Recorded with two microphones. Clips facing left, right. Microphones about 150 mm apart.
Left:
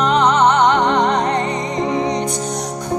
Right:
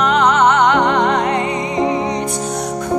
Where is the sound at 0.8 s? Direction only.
5° right (ahead or behind).